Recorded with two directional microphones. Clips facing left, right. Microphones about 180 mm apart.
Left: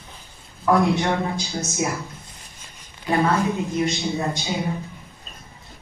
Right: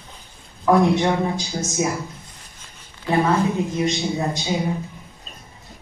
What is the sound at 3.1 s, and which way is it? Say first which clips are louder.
Speech: right 1 dB; 15° right (ahead or behind).